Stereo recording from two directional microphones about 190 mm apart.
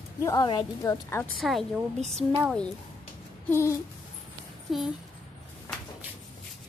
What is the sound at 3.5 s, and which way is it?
Speech, 15° left (ahead or behind).